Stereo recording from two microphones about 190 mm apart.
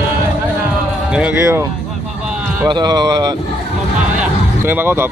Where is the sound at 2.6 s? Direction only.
20° right (ahead or behind).